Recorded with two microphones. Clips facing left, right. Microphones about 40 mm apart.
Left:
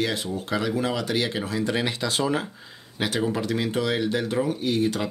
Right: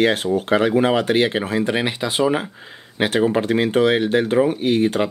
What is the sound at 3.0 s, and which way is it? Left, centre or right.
Speech, right.